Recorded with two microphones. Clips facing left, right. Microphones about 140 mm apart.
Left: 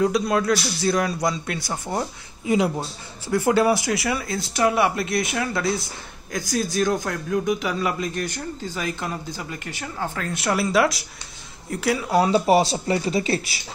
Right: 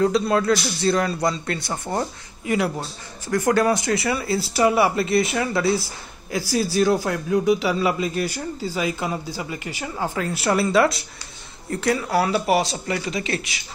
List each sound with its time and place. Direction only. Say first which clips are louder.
0.0 s speech: right 1 dB; centre (ahead or behind)
2.4 s speech: left 2 dB; 15° left (ahead or behind)
3.8 s a man's voice: right 2 dB; centre (ahead or behind)
12.4 s speech: left 3 dB; 30° left (ahead or behind)